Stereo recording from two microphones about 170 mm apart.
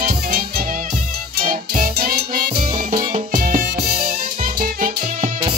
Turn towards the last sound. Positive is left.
turn(degrees=-50)  # may be behind; listen again after turning